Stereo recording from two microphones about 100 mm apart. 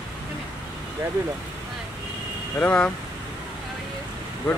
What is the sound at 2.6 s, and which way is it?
Speech, 15° left (ahead or behind).